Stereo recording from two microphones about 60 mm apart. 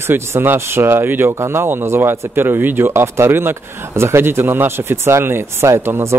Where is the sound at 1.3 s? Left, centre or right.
Right.